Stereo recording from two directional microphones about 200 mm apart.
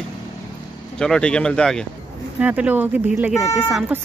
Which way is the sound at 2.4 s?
10° right (ahead or behind).